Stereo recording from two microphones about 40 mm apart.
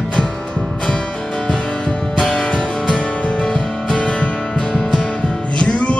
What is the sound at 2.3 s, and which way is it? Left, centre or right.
Music, centre.